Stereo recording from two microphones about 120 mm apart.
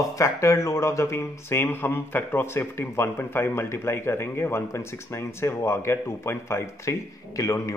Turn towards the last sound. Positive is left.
turn(degrees=25)  # may be behind; listen again after turning